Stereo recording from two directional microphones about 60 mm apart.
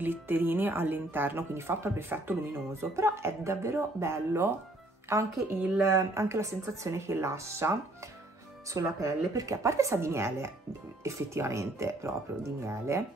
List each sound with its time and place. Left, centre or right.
0.0 s speech: right
8.7 s a woman's voice: right